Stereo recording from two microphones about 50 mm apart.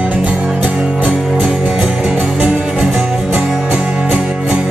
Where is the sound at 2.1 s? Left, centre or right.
Right.